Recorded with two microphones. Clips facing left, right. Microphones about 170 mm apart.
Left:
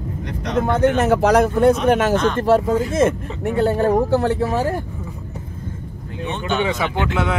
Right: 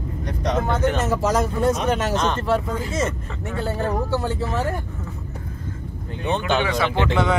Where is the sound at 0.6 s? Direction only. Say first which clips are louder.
Left 9 dB; 60° left (ahead or behind).